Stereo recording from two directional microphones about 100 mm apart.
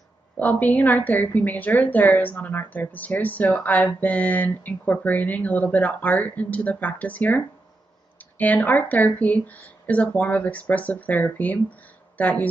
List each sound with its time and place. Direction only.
0.4 s a woman's voice: 15° left (ahead or behind)